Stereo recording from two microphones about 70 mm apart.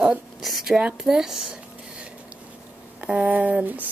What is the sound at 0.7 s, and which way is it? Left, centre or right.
Speech, centre.